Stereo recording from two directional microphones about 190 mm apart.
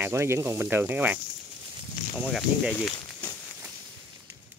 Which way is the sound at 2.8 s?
15° left (ahead or behind).